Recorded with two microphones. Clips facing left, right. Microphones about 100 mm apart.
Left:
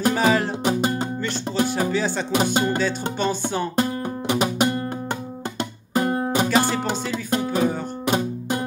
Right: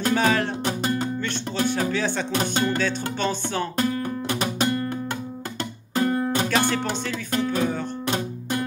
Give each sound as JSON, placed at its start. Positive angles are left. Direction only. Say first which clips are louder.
{"t": 0.0, "sound": "music", "louder": "left 2 dB", "side_deg": 10}
{"t": 5.9, "sound": "music", "louder": "left 1 dB", "side_deg": 20}
{"t": 6.5, "sound": "music", "louder": "left 2 dB", "side_deg": 10}